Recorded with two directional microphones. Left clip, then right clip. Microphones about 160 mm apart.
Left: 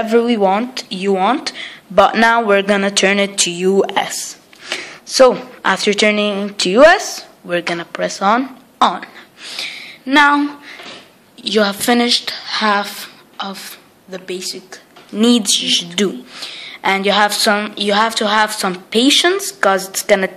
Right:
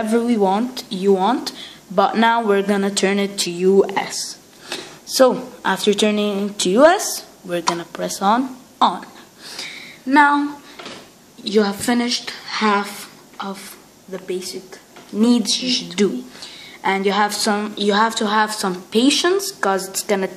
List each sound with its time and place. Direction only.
0.0 s speech: 5° left (ahead or behind); by 10.4 s 25° left (ahead or behind)
11.4 s a woman's voice: 30° left (ahead or behind)
15.1 s a woman's voice: 30° left (ahead or behind)